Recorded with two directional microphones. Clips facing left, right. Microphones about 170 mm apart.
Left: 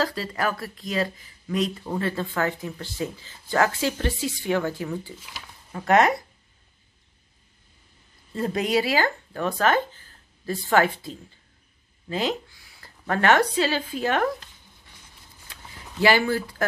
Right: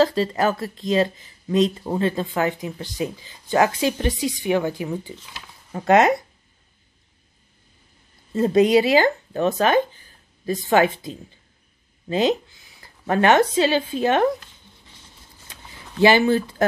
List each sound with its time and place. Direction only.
0.0 s speech: 25° right (ahead or behind)
8.4 s speech: 20° right (ahead or behind)
15.5 s a sound: 20° right (ahead or behind)